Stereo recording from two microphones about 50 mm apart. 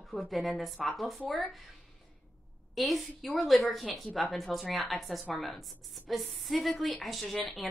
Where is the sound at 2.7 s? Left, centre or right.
Centre.